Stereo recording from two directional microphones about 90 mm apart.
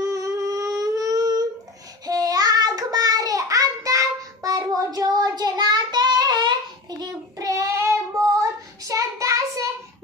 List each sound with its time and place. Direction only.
0.0 s humming: 35° right (ahead or behind)
2.0 s child singing: 45° right (ahead or behind)